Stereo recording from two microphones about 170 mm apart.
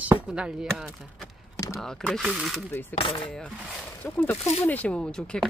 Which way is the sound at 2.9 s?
30° left (ahead or behind).